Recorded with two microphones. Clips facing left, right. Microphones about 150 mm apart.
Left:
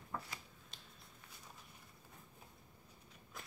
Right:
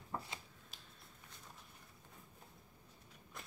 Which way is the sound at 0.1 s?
25° right (ahead or behind).